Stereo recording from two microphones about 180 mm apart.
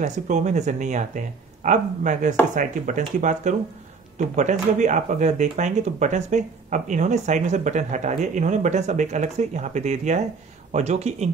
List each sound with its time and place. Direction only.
0.0 s speech: 40° right (ahead or behind)